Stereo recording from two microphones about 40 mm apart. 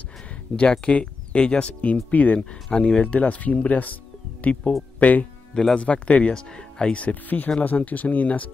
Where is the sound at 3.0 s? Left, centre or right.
Left.